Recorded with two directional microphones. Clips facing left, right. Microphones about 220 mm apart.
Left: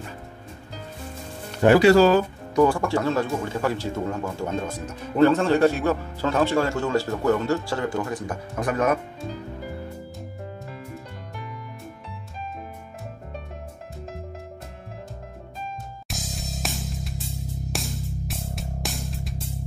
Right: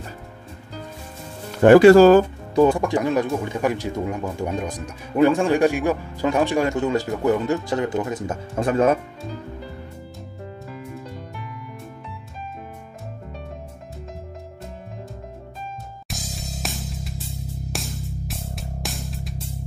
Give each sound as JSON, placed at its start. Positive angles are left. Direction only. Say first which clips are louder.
{"t": 1.6, "sound": "speech", "louder": "right 5 dB", "side_deg": -50}
{"t": 2.5, "sound": "speech", "louder": "right 3 dB", "side_deg": -20}
{"t": 16.1, "sound": "music", "louder": "even", "side_deg": 0}